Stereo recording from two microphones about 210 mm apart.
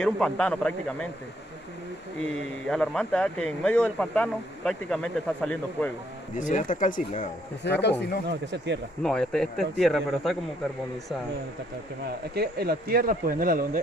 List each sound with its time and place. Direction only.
0.0 s a man's voice: 5° left (ahead or behind)
2.2 s a man's voice: 5° left (ahead or behind)
6.3 s speech: 40° left (ahead or behind)
7.6 s speech: 55° left (ahead or behind)
8.3 s speech: 55° right (ahead or behind)
9.0 s a man's voice: 5° left (ahead or behind)
12.4 s speech: 50° right (ahead or behind)